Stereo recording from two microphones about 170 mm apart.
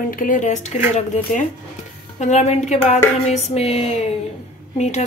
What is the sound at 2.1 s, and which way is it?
A woman's voice, 40° left (ahead or behind).